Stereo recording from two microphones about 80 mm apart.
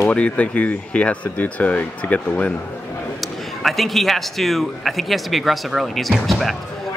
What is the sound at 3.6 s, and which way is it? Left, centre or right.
A man's voice, centre.